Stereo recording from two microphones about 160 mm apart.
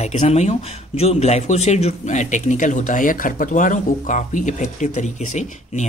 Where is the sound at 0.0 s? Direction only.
45° left (ahead or behind).